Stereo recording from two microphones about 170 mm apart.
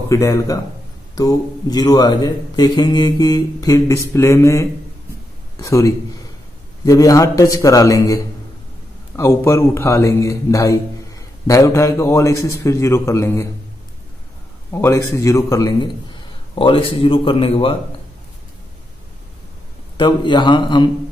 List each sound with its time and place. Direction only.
0.1 s a man's voice: 20° left (ahead or behind)
14.7 s a man's voice: 15° left (ahead or behind); by 17.7 s 30° left (ahead or behind)
20.0 s a man's voice: 25° left (ahead or behind)